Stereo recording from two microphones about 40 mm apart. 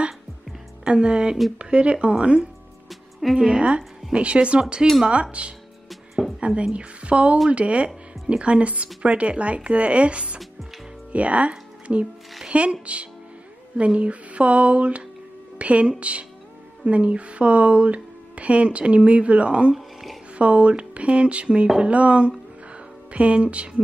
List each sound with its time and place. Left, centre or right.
0.8 s speech: right
2.9 s music: centre
3.3 s a woman's voice: centre
4.1 s speech: right
19.7 s a sound: centre
20.3 s speech: right
22.7 s music: right